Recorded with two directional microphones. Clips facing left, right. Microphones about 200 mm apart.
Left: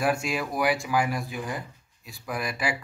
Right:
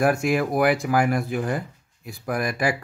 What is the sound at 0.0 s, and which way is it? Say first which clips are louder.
Speech: right 6 dB; 55° right (ahead or behind).